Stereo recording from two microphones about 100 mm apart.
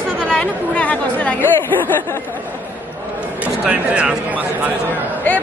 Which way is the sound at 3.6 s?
10° right (ahead or behind).